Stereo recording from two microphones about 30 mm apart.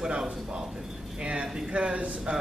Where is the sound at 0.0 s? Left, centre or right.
Right.